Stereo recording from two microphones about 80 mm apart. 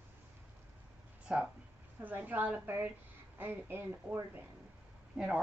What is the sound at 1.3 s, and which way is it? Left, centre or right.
Speech, centre.